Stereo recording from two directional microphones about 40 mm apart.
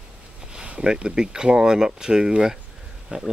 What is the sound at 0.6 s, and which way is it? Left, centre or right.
Speech, right.